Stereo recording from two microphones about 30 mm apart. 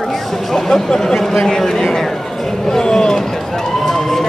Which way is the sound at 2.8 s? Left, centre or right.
Left.